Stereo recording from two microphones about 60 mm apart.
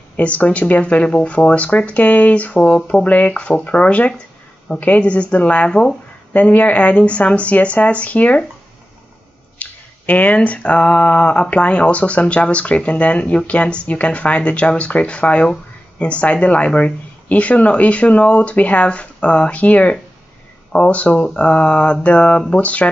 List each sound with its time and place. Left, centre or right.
0.2 s speech: left
5.7 s speech: centre
6.3 s speech: left
9.6 s a sound: left
11.5 s speech: left